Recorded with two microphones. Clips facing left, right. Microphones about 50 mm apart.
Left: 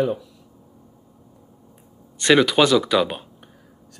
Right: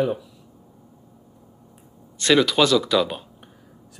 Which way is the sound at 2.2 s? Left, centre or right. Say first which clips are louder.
Left 2 dB; centre.